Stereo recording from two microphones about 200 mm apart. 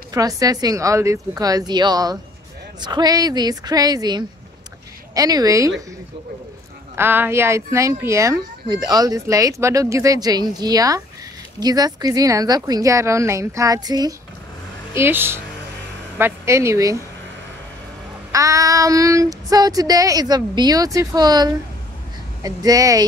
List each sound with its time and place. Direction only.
0.1 s a woman's voice: 15° right (ahead or behind)
7.0 s speech: 10° right (ahead or behind)
18.3 s a woman's voice: 15° right (ahead or behind)